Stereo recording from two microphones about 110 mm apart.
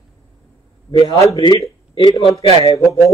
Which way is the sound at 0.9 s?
55° left (ahead or behind).